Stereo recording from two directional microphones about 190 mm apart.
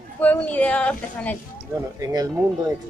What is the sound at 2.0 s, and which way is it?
Speech, 20° right (ahead or behind).